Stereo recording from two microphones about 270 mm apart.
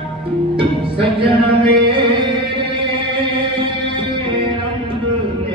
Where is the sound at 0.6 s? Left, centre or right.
Centre.